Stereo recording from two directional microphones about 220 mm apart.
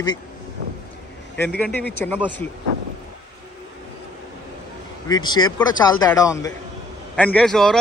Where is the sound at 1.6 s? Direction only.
5° left (ahead or behind).